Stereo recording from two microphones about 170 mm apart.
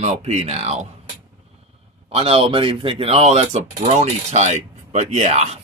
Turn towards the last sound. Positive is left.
turn(degrees=-40)  # may be behind; listen again after turning